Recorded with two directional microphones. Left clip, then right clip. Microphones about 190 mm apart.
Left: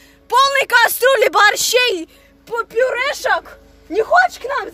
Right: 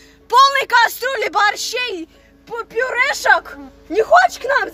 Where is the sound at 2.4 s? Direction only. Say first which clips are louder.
Left 3 dB; 40° left (ahead or behind).